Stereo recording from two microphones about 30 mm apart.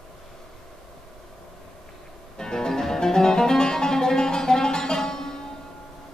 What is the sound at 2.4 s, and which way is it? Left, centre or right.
Music, left.